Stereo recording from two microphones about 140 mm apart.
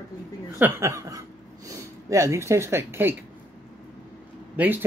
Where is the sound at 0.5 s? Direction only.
15° right (ahead or behind).